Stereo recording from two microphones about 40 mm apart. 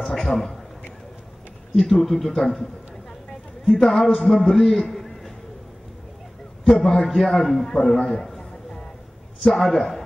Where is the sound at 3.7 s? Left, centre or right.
Centre.